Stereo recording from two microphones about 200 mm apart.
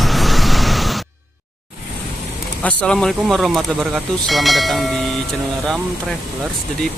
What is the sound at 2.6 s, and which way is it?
Speech, 5° left (ahead or behind).